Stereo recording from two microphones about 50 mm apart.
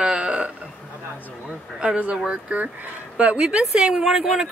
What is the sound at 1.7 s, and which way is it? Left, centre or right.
Speech, right.